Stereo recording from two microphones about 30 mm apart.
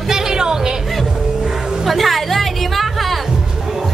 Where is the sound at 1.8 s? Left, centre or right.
Centre.